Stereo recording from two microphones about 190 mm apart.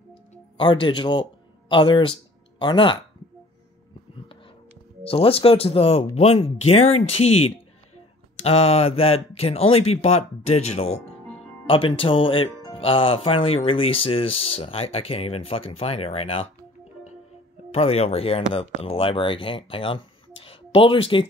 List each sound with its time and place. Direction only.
0.1 s music: 25° left (ahead or behind)
1.7 s speech: 25° left (ahead or behind)
5.0 s speech: 30° left (ahead or behind)
17.7 s speech: 35° left (ahead or behind)